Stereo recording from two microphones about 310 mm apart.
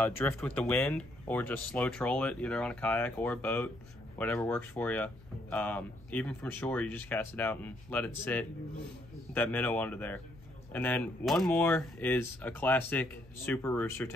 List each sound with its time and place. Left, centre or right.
0.0 s speech: centre